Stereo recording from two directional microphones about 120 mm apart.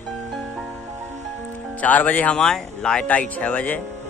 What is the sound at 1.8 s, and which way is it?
Speech, 10° left (ahead or behind).